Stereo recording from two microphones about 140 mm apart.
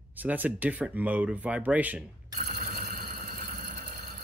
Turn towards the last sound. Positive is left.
turn(degrees=-70)  # may be behind; listen again after turning